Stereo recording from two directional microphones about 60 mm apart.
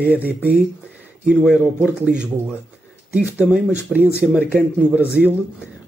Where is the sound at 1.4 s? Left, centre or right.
Centre.